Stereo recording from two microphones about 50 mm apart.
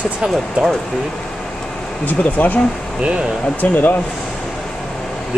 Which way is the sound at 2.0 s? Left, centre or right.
Left.